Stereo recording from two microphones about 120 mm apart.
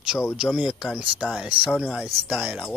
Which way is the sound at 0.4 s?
5° right (ahead or behind).